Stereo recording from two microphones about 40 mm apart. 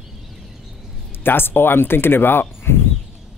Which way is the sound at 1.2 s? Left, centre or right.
Left.